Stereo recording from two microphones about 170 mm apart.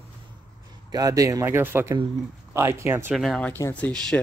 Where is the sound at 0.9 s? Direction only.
20° right (ahead or behind).